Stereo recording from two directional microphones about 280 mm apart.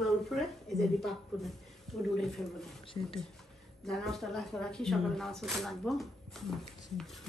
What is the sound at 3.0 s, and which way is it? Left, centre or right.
Speech, centre.